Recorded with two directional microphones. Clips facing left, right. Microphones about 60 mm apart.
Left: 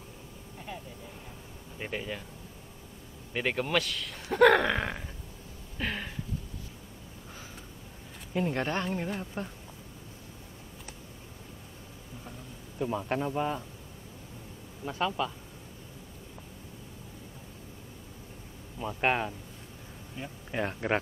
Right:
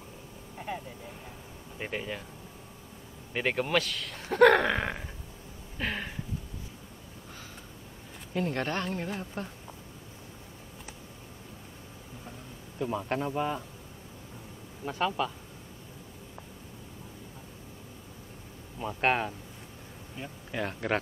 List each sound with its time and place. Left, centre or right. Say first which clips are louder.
1.8 s speech: right 1 dB; centre
3.3 s speech: right 1 dB; centre
5.8 s a sound: right 1 dB; centre
8.3 s speech: left 1 dB; centre
12.7 s speech: even; centre
14.9 s speech: right 1 dB; centre
18.8 s speech: right 1 dB; centre
20.5 s speech: left 1 dB; centre